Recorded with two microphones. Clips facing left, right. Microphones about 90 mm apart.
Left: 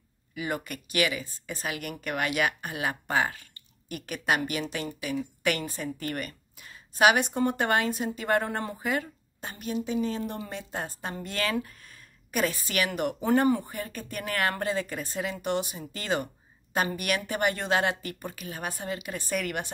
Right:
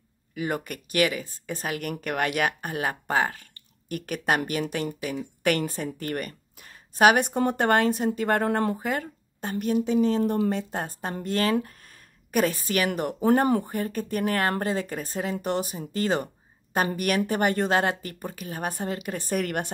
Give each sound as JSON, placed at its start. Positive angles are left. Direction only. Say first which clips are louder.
{"t": 0.3, "sound": "a woman's voice", "louder": "right 3 dB", "side_deg": -45}